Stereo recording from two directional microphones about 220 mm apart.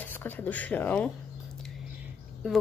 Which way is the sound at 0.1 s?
10° left (ahead or behind).